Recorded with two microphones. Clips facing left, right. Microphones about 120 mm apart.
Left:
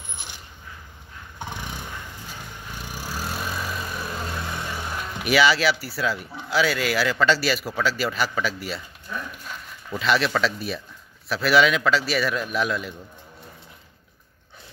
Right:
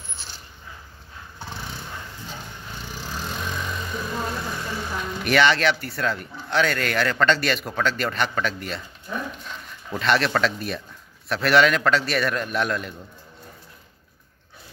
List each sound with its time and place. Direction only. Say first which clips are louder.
0.1 s mechanisms: left 2 dB; 15° left (ahead or behind)
1.4 s vehicle: left 2 dB; 15° left (ahead or behind)
6.5 s a man's voice: even; 5° left (ahead or behind)
9.9 s a man's voice: right 1 dB; centre (ahead or behind)